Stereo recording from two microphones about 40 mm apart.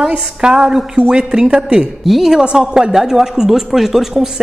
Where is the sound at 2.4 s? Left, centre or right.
Centre.